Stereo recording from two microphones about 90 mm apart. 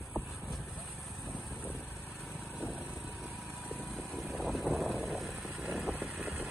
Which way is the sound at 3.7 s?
15° left (ahead or behind).